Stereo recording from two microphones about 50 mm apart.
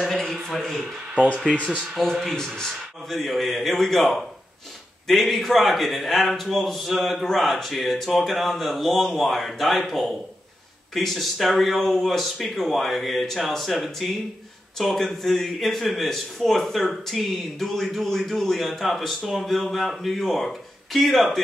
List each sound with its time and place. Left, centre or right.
0.1 s a sound: centre
1.1 s speech: right
2.2 s speech: centre
3.1 s speech: centre